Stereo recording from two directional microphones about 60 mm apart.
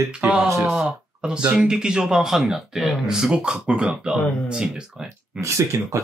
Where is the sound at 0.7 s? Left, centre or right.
Centre.